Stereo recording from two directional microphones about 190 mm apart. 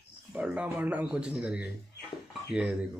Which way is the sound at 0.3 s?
5° right (ahead or behind).